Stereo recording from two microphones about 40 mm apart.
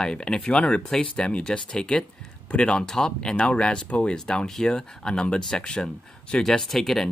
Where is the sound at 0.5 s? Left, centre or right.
Left.